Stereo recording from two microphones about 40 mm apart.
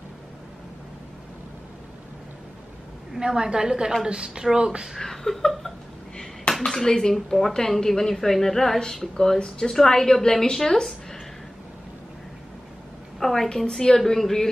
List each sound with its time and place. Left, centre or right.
3.2 s speech: centre
4.9 s speech: centre
6.6 s speech: centre
13.2 s speech: centre